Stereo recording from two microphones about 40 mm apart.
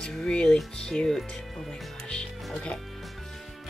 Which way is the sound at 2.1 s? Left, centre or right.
Left.